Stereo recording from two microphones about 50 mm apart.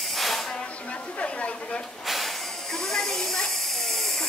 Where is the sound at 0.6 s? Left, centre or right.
Left.